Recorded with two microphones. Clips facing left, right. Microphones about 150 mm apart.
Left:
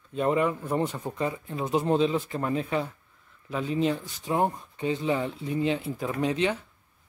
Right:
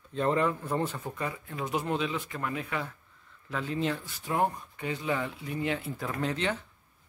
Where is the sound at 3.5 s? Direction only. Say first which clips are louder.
Left 5 dB; 15° left (ahead or behind).